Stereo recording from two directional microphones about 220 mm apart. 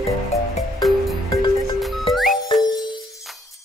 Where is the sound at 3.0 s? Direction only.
Centre (ahead or behind).